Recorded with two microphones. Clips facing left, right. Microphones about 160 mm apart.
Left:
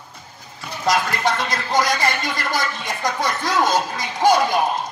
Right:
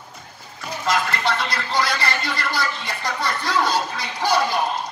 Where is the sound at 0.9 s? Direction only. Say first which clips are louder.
Left 2 dB; 45° left (ahead or behind).